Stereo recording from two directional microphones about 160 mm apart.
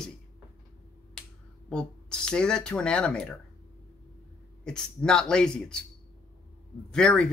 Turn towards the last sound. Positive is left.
turn(degrees=5)  # may be behind; listen again after turning